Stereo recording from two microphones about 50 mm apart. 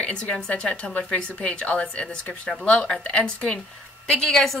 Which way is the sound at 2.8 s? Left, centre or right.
Centre.